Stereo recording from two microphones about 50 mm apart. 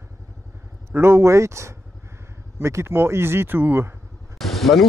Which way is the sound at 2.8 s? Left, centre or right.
Right.